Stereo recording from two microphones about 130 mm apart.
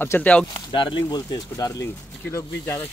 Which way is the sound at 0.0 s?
15° left (ahead or behind).